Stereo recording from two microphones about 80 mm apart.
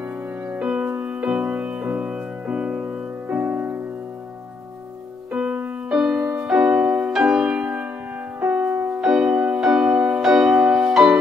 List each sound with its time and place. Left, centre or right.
0.5 s music: centre
5.3 s music: centre
7.1 s music: centre
9.0 s music: centre
9.3 s music: centre
9.6 s music: centre